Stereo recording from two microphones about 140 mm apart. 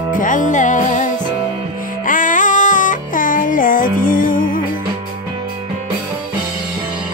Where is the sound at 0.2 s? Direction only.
65° left (ahead or behind).